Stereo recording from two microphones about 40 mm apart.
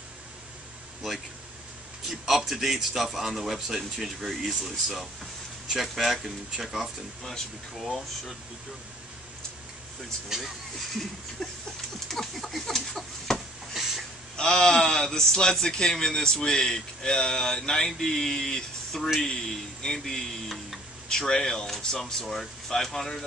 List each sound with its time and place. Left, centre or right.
2.0 s a man's voice: centre
10.3 s speech: centre
12.1 s a sound: centre
12.6 s chicken: centre
14.3 s a man's voice: centre